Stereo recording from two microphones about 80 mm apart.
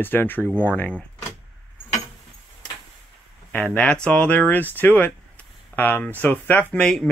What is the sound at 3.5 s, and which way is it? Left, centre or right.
Speech, centre.